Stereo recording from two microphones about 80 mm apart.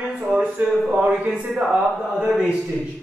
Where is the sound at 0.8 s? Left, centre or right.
Centre.